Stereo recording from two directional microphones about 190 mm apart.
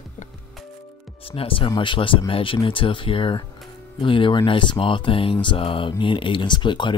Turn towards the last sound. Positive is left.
turn(degrees=25)  # may be behind; listen again after turning